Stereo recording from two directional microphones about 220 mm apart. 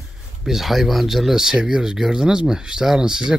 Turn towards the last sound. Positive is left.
turn(degrees=-5)  # may be behind; listen again after turning